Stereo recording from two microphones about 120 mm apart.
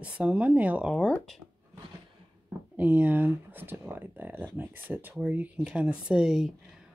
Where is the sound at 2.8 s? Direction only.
15° right (ahead or behind).